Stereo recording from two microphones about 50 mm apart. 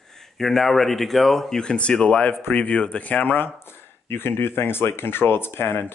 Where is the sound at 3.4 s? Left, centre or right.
Left.